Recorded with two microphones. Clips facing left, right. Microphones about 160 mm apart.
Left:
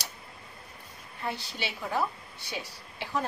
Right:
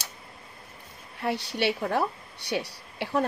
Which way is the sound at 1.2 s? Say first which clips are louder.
Right 8 dB; 70° right (ahead or behind).